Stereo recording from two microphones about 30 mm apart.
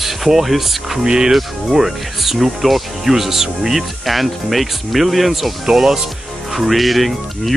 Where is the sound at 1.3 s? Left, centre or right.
Centre.